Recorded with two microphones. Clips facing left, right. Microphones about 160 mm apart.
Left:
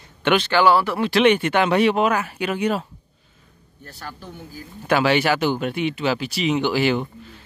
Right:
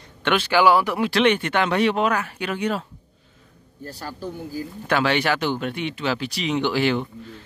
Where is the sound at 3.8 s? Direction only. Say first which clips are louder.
Right 5 dB; 35° right (ahead or behind).